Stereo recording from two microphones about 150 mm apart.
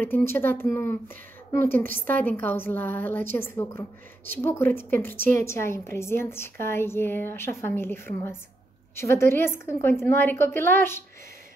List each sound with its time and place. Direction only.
0.0 s a woman's voice: 15° left (ahead or behind)